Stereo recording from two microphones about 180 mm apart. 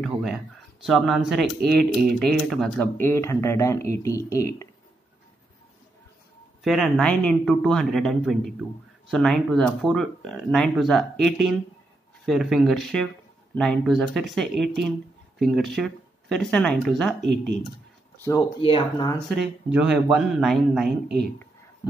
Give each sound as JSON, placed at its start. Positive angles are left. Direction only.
{"t": 0.0, "sound": "speech", "side_deg": 0}
{"t": 6.6, "sound": "speech", "side_deg": 0}
{"t": 18.2, "sound": "speech", "side_deg": 20}
{"t": 18.6, "sound": "speech", "side_deg": 30}
{"t": 19.2, "sound": "speech", "side_deg": -5}